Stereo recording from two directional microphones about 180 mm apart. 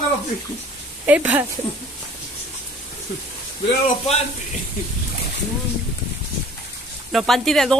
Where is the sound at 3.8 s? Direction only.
35° left (ahead or behind).